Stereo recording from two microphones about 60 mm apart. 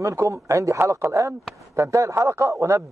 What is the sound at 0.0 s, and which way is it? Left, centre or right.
Speech, right.